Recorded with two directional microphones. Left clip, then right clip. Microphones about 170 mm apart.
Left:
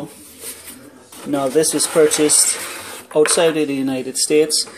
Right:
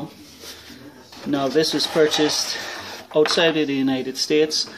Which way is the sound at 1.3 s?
5° left (ahead or behind).